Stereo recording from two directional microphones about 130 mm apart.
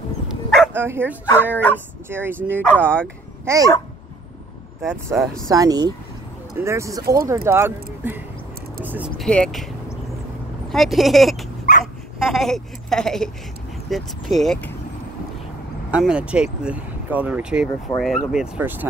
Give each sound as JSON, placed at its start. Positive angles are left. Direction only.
{"t": 0.7, "sound": "speech", "side_deg": -15}
{"t": 2.6, "sound": "speech", "side_deg": 10}
{"t": 3.4, "sound": "speech", "side_deg": -25}
{"t": 5.1, "sound": "speech", "side_deg": -10}
{"t": 5.5, "sound": "speech", "side_deg": -30}
{"t": 9.2, "sound": "speech", "side_deg": 5}
{"t": 10.7, "sound": "speech", "side_deg": 0}
{"t": 16.0, "sound": "speech", "side_deg": -5}